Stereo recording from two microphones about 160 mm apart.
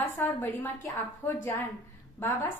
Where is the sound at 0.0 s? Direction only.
15° left (ahead or behind).